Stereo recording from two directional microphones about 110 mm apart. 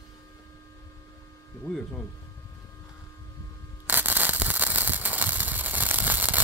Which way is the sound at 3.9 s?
15° right (ahead or behind).